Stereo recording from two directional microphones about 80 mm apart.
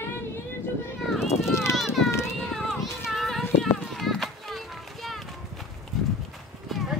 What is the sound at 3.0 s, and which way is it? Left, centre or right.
Child singing, centre.